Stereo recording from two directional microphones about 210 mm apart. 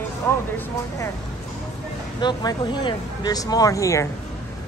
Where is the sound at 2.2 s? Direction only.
20° left (ahead or behind).